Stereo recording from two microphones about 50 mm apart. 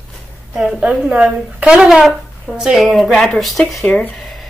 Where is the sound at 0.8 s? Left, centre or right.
Right.